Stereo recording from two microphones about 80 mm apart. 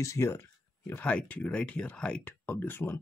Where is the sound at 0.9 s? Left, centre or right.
Centre.